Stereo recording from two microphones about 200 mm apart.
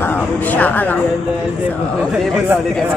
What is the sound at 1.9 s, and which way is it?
Speech, centre (ahead or behind).